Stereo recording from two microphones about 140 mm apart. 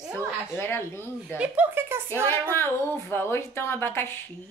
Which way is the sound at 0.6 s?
15° left (ahead or behind).